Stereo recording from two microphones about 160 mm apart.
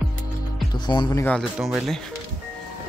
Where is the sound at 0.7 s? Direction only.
30° left (ahead or behind).